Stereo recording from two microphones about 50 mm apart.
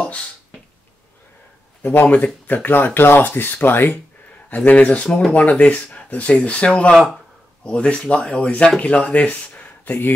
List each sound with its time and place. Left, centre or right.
2.0 s speech: left
4.6 s speech: left
5.0 s speech: centre
5.3 s speech: left